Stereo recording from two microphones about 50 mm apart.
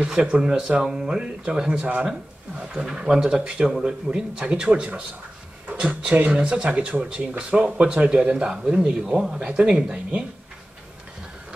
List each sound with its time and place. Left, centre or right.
0.2 s speech: centre